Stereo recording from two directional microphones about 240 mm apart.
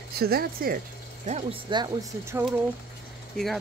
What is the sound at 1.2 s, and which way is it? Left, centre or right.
Speech, right.